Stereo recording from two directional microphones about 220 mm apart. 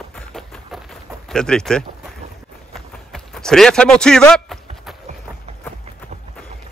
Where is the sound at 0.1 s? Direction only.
5° left (ahead or behind).